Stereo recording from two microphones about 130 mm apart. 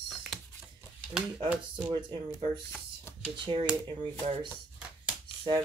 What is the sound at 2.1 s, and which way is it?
Speech, 40° right (ahead or behind).